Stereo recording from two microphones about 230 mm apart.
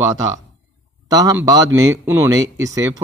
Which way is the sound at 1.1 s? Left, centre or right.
Centre.